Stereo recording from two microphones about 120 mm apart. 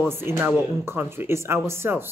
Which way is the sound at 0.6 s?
20° right (ahead or behind).